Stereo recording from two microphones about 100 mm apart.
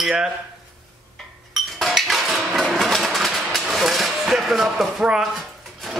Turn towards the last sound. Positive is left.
turn(degrees=-5)  # may be behind; listen again after turning